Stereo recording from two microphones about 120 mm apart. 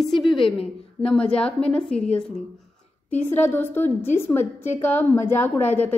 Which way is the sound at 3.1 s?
15° left (ahead or behind).